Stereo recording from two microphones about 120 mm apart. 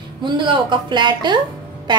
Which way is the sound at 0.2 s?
40° right (ahead or behind).